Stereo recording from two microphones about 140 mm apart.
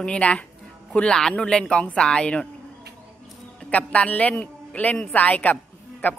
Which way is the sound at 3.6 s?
10° left (ahead or behind).